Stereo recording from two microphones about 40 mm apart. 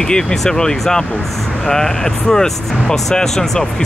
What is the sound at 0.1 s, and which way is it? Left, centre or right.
Speech, centre.